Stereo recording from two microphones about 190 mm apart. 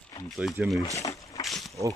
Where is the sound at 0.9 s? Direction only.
20° left (ahead or behind).